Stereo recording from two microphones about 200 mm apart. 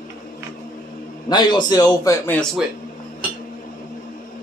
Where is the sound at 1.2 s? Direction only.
20° left (ahead or behind).